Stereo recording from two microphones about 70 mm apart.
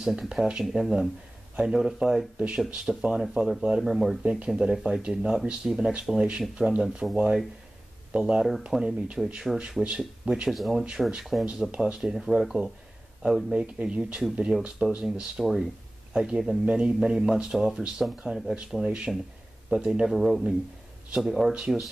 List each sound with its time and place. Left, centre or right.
0.0 s speech: centre
3.8 s speech: centre
4.2 s speech: centre
8.1 s speech: centre
13.7 s speech: centre